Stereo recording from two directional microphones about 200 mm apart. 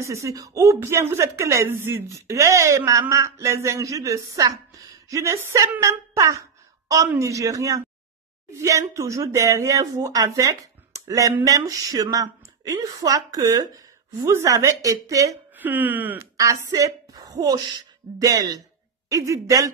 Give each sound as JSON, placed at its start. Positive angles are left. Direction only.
{"t": 0.0, "sound": "speech", "side_deg": -15}